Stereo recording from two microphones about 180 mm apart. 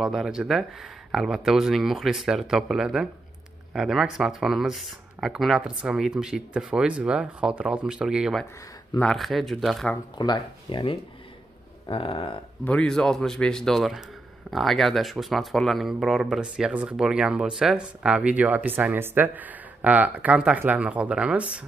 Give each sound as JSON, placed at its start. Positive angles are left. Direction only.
{"t": 0.0, "sound": "speech", "side_deg": 0}
{"t": 10.1, "sound": "speech", "side_deg": 25}
{"t": 12.6, "sound": "speech", "side_deg": 5}